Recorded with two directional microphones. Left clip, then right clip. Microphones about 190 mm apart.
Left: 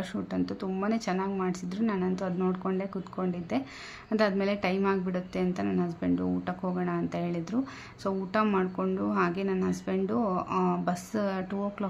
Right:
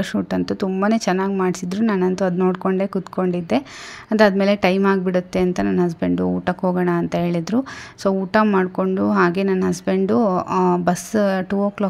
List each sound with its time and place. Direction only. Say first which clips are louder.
0.0 s a woman's voice: right 10 dB; 40° right (ahead or behind)